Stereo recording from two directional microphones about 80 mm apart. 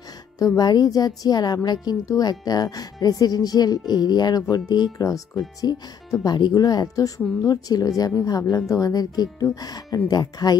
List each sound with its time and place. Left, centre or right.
0.6 s speech: left
5.7 s speech: left